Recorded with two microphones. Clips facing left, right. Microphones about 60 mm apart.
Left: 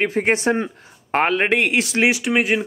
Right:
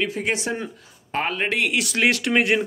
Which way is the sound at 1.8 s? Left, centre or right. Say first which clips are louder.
Left 2 dB; left.